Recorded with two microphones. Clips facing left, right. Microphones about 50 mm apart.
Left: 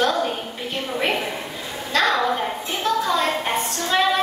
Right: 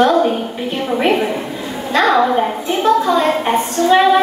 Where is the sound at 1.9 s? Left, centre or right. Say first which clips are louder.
Right 7 dB; right.